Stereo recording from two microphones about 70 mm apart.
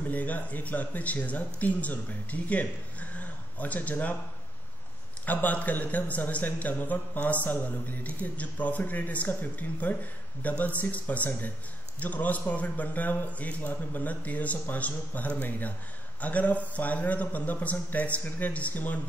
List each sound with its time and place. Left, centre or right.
0.1 s speech: left
5.2 s speech: left